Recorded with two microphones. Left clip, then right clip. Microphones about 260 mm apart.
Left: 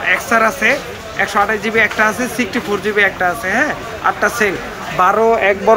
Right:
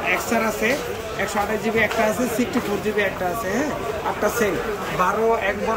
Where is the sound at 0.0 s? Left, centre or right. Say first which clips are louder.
Left 7 dB; left.